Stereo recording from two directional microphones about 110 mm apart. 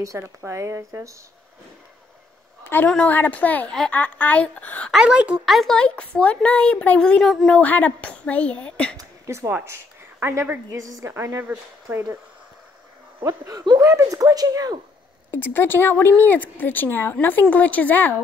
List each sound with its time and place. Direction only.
0.0 s speech: 25° right (ahead or behind)
2.6 s a sound: 20° left (ahead or behind)
2.9 s a woman's voice: 15° left (ahead or behind)
4.9 s a woman's voice: 10° right (ahead or behind); by 8.9 s 10° left (ahead or behind)
8.9 s a sound: 30° right (ahead or behind)
10.2 s speech: 20° right (ahead or behind)
10.7 s speech: 30° right (ahead or behind)
13.5 s speech: 35° right (ahead or behind)
15.3 s a woman's voice: 20° left (ahead or behind)